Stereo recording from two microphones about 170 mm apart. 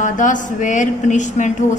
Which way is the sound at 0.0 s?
50° left (ahead or behind).